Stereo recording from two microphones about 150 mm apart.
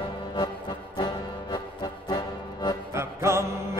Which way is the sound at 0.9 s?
30° left (ahead or behind).